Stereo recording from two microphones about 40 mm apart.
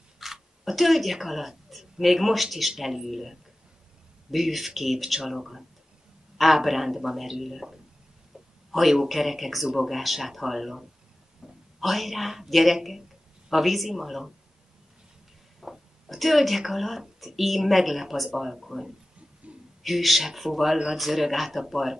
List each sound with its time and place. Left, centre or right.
0.2 s a man's voice: centre
8.9 s speech: centre
11.4 s a sound: centre
11.8 s speech: centre
15.6 s speech: centre